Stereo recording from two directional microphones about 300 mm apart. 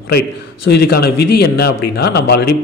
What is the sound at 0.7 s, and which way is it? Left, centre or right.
Speech, left.